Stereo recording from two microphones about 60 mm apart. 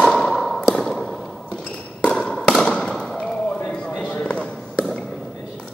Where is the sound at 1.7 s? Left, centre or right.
Centre.